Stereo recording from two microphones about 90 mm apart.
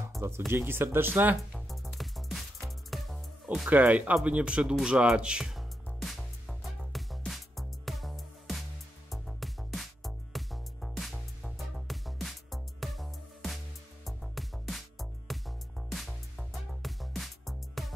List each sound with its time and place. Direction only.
0.5 s speech: 25° right (ahead or behind)
1.5 s music: centre (ahead or behind)
3.7 s speech: 20° right (ahead or behind)
5.9 s music: centre (ahead or behind)